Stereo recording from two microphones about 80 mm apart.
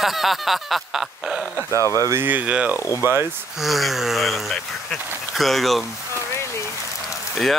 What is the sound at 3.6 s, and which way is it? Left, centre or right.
Speech, centre.